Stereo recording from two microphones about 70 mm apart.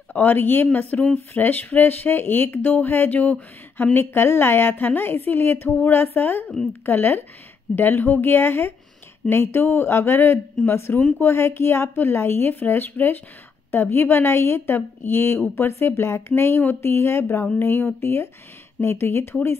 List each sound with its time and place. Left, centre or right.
0.1 s speech: left